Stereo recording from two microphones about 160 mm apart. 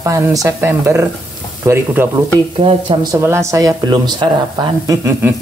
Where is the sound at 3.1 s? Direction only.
15° right (ahead or behind).